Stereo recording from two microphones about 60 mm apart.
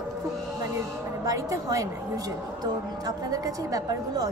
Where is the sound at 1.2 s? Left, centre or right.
Right.